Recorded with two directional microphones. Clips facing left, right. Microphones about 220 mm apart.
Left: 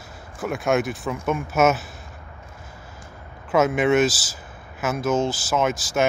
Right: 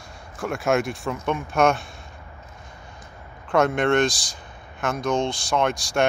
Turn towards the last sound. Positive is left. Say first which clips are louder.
# even
turn(degrees=5)  # may be behind; listen again after turning